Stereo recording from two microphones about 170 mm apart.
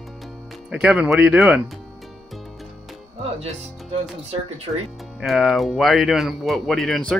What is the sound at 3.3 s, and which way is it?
Speech, 40° right (ahead or behind).